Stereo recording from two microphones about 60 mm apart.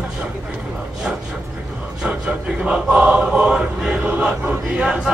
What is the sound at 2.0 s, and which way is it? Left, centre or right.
Choir, centre.